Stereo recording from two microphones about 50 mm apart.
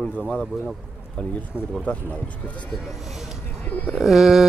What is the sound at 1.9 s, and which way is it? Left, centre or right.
Speech, left.